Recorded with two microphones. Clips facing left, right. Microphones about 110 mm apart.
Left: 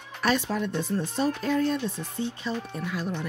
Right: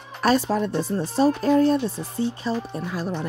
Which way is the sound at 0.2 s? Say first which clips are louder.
Right 5 dB; 35° right (ahead or behind).